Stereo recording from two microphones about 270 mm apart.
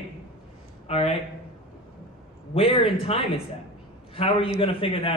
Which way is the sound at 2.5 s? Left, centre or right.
Left.